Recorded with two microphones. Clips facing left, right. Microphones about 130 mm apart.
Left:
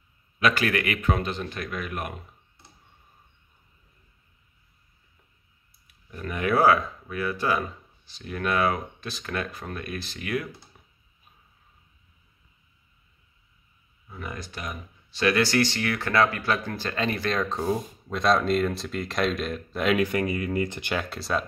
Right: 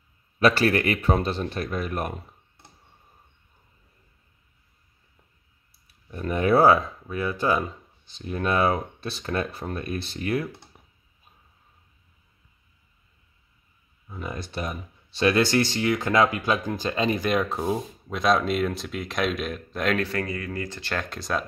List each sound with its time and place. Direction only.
0.4 s speech: 35° right (ahead or behind)
6.0 s speech: 30° right (ahead or behind)
14.0 s speech: 20° right (ahead or behind); by 20.9 s 20° left (ahead or behind)
20.9 s speech: 5° left (ahead or behind)